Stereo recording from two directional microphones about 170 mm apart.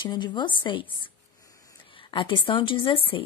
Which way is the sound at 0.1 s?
25° left (ahead or behind).